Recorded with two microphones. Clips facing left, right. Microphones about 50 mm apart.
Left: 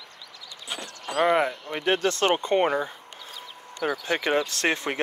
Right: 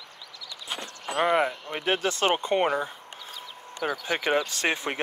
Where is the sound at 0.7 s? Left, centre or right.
Right.